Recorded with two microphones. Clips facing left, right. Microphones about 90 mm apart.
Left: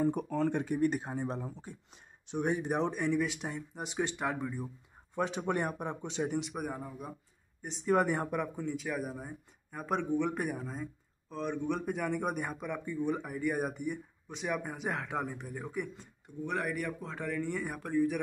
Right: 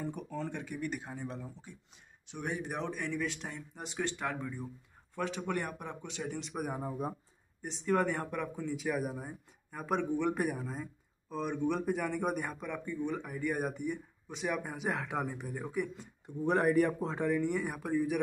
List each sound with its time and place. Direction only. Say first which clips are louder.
0.3 s speech: left 8 dB; 55° left (ahead or behind)
0.6 s speech: left 8 dB; 40° left (ahead or behind)
2.3 s speech: left 6 dB; 25° left (ahead or behind)
5.1 s speech: left 3 dB; 20° left (ahead or behind)
6.9 s speech: right 6 dB; 35° right (ahead or behind)
7.6 s speech: left 2 dB; 5° left (ahead or behind)
8.6 s speech: right 1 dB; 5° right (ahead or behind)
16.4 s a man's voice: right 7 dB; 35° right (ahead or behind); by 18.2 s 5° right (ahead or behind)